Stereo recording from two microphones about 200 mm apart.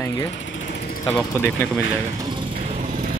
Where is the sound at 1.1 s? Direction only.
10° left (ahead or behind).